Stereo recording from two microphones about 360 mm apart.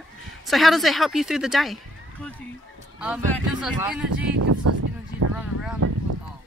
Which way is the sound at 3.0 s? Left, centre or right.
Centre.